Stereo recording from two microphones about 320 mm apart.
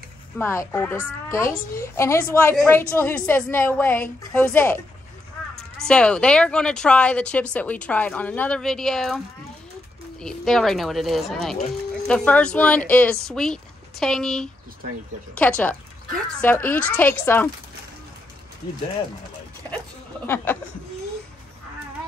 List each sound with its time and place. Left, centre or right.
0.4 s a woman's voice: centre
10.2 s a woman's voice: centre
20.5 s a woman's voice: centre